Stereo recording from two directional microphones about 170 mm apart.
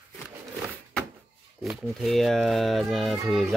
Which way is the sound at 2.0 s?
Centre (ahead or behind).